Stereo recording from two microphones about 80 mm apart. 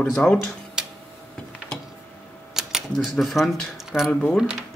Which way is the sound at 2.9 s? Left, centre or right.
Centre.